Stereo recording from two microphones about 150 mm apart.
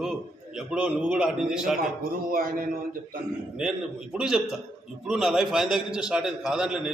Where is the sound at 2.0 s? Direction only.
75° right (ahead or behind).